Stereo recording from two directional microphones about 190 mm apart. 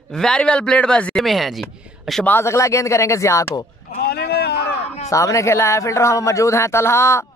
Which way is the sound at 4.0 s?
60° left (ahead or behind).